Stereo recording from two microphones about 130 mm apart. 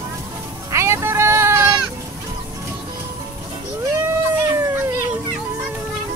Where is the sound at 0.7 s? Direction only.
20° right (ahead or behind).